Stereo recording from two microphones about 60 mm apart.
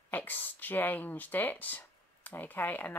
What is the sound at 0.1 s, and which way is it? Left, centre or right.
Speech, left.